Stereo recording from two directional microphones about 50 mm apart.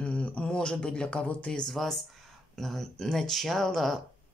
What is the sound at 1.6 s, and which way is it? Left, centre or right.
Speech, centre.